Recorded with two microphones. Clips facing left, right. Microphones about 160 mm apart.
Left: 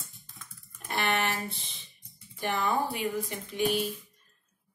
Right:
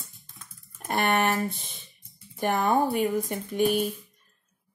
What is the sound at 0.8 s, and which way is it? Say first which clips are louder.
A woman's voice: right 5 dB; 45° right (ahead or behind).